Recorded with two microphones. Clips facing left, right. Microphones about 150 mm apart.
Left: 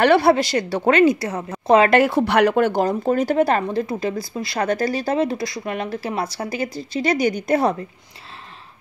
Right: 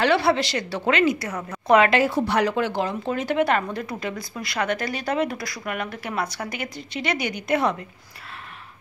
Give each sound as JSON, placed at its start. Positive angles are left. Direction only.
{"t": 0.0, "sound": "speech", "side_deg": 45}
{"t": 1.9, "sound": "speech", "side_deg": 60}